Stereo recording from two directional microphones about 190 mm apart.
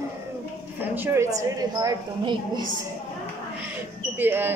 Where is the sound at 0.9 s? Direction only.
10° right (ahead or behind).